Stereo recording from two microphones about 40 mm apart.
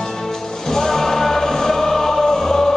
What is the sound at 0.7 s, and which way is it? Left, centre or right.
Music, centre.